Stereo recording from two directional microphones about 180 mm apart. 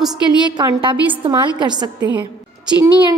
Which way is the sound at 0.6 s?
25° right (ahead or behind).